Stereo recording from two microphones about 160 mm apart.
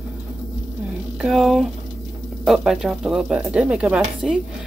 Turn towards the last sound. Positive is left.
turn(degrees=-5)  # may be behind; listen again after turning